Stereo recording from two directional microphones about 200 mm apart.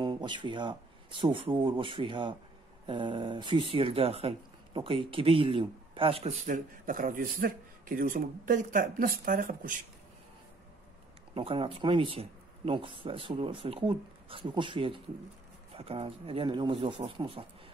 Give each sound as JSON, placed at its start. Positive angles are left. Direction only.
{"t": 0.0, "sound": "speech", "side_deg": -20}
{"t": 6.4, "sound": "a man's voice", "side_deg": -40}
{"t": 11.3, "sound": "speech", "side_deg": -25}